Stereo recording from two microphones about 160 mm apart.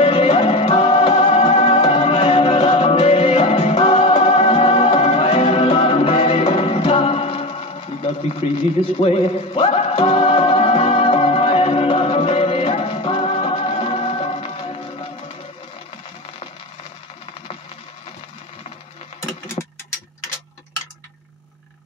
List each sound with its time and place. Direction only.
0.0 s music: 35° left (ahead or behind)